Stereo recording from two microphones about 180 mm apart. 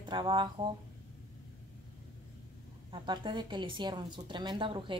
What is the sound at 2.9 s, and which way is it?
A woman's voice, 25° right (ahead or behind).